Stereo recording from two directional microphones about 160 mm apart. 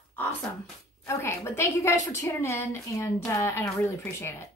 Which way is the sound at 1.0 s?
15° left (ahead or behind).